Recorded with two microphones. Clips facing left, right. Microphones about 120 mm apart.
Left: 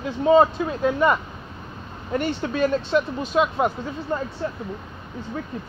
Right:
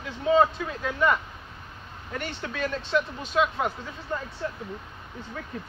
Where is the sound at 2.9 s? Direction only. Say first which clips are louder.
Left 4 dB; 30° left (ahead or behind).